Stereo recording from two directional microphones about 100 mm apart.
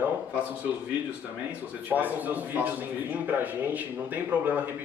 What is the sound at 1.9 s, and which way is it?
Speech, 15° right (ahead or behind).